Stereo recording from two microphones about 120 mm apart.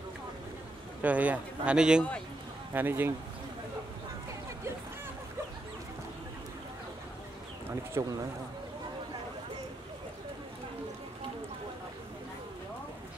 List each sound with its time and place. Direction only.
1.0 s speech: 10° right (ahead or behind)
8.0 s a man's voice: 25° right (ahead or behind)